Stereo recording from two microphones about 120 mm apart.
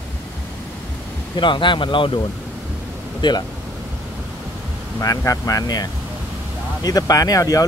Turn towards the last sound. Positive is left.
turn(degrees=30)  # may be behind; listen again after turning